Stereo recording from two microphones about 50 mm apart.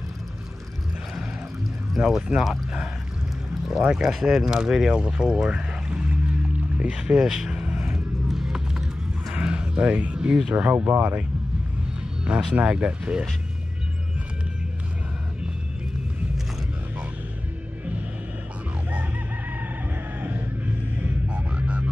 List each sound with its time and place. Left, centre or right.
2.0 s speech: centre
3.9 s speech: centre; by 7.2 s right
7.2 s speech: centre
7.6 s music: right
8.3 s music: centre
9.3 s a sound: right
10.5 s speech: right
12.3 s speech: right
20.2 s music: right